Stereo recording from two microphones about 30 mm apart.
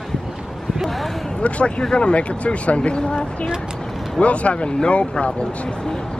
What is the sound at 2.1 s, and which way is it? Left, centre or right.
Speech, left.